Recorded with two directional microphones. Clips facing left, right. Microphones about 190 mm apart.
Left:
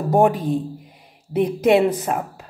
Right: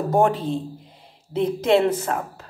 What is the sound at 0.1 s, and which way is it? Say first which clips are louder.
A woman's voice: left 4 dB; 15° left (ahead or behind).